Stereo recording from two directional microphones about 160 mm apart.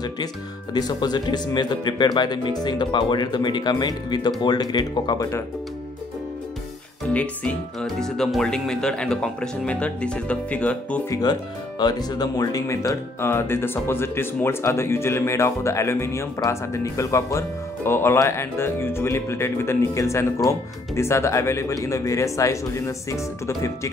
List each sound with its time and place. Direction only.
0.7 s speech: 25° left (ahead or behind)
7.1 s speech: 5° left (ahead or behind)
11.1 s speech: 25° left (ahead or behind)